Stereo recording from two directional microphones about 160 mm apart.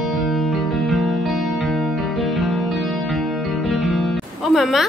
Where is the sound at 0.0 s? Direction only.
Centre (ahead or behind).